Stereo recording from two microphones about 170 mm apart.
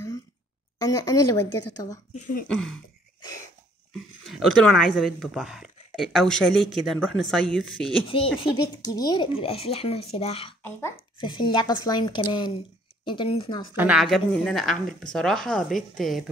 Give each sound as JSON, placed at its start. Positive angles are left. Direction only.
{"t": 0.7, "sound": "speech", "side_deg": 20}
{"t": 2.1, "sound": "speech", "side_deg": 50}
{"t": 2.4, "sound": "speech", "side_deg": 5}
{"t": 4.3, "sound": "speech", "side_deg": 0}
{"t": 8.4, "sound": "speech", "side_deg": 25}
{"t": 10.6, "sound": "a child's voice", "side_deg": 15}
{"t": 11.1, "sound": "speech", "side_deg": 30}
{"t": 13.7, "sound": "a woman's voice", "side_deg": -10}
{"t": 14.0, "sound": "speech", "side_deg": 5}